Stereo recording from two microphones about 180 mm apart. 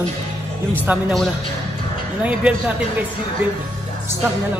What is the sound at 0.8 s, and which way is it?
Speech, centre (ahead or behind).